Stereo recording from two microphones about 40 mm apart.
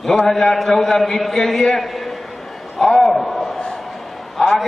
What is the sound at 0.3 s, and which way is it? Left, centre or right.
A man's voice, centre.